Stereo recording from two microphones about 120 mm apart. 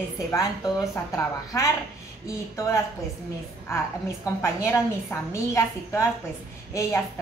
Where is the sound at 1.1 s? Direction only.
25° left (ahead or behind).